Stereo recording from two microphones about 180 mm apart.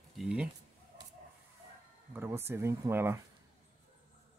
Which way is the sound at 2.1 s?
15° right (ahead or behind).